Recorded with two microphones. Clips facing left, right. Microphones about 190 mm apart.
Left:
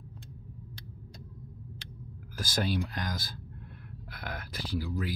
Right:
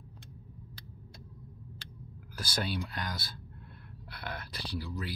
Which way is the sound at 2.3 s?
45° left (ahead or behind).